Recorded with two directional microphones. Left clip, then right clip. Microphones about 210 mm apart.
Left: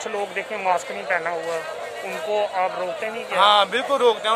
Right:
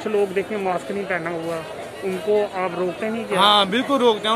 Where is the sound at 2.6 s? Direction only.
Centre (ahead or behind).